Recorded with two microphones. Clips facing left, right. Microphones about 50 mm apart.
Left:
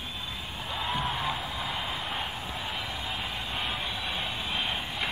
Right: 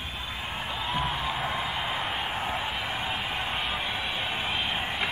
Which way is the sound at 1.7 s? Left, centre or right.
Centre.